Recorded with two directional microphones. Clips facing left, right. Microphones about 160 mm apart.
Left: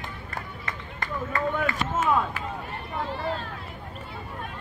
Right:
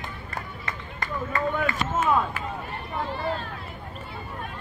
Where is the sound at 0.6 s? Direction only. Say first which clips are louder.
Right 1 dB; 20° right (ahead or behind).